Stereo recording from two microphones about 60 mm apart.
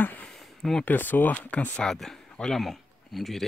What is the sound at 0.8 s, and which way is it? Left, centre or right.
Speech, left.